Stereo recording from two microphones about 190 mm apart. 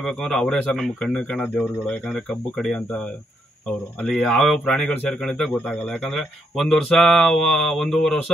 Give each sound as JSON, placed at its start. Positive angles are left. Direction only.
{"t": 0.0, "sound": "a man's voice", "side_deg": 0}
{"t": 4.0, "sound": "a man's voice", "side_deg": 0}